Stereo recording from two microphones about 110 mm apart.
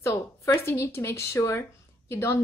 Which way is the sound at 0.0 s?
25° left (ahead or behind).